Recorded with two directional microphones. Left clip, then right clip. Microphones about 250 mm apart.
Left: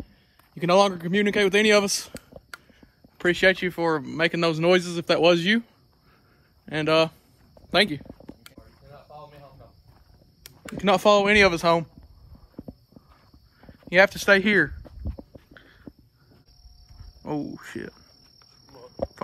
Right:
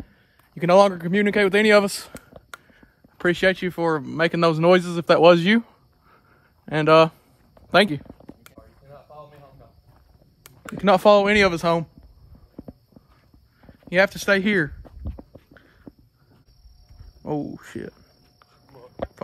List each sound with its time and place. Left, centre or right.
0.6 s a man's voice: right
8.0 s a sound: left
10.8 s speech: centre
13.6 s a sound: centre
17.2 s speech: centre
18.7 s cricket: left